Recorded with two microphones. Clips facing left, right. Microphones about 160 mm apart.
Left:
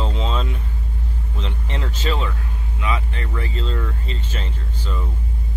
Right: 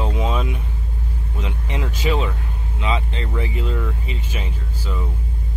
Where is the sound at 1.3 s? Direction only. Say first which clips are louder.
Right 2 dB; 10° right (ahead or behind).